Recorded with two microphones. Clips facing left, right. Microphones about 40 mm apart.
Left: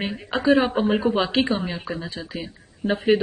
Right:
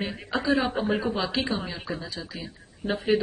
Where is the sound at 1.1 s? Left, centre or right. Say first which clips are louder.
Left 6 dB; left.